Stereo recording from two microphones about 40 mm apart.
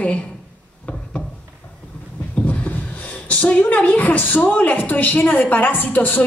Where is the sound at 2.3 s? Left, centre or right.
Left.